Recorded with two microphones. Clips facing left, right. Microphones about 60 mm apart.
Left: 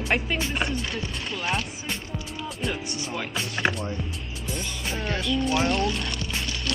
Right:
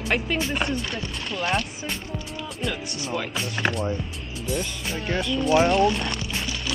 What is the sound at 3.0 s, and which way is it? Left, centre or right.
Speech, centre.